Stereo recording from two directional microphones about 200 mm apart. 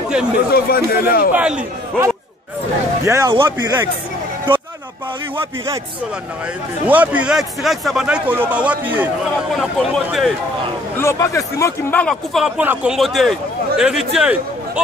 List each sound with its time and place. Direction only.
0.5 s speech: 50° left (ahead or behind)
1.3 s speech: 5° right (ahead or behind)
6.9 s a man's voice: 5° right (ahead or behind)
11.0 s a man's voice: 15° left (ahead or behind); by 14.4 s 5° right (ahead or behind)